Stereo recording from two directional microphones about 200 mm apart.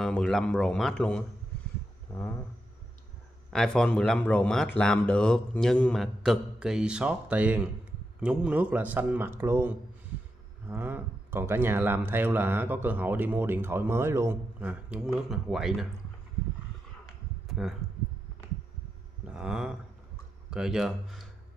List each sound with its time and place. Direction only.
0.0 s speech: centre (ahead or behind)
3.4 s speech: 5° left (ahead or behind)
17.6 s speech: centre (ahead or behind)
19.2 s speech: 5° right (ahead or behind)